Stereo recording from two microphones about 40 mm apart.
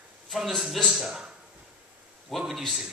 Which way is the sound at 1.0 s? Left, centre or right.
Centre.